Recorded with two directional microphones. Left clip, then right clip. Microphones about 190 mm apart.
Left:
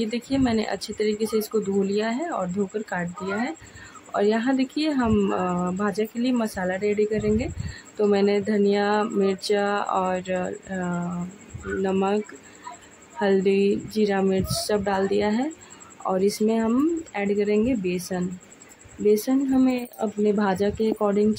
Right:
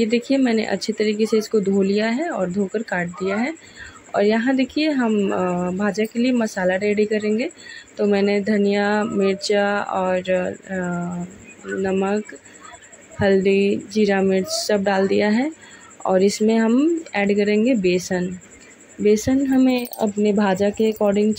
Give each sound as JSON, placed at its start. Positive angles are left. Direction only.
{"t": 0.0, "sound": "speech", "side_deg": -10}
{"t": 13.2, "sound": "speech", "side_deg": -15}